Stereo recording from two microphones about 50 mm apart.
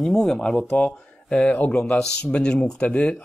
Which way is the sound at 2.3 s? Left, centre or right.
Centre.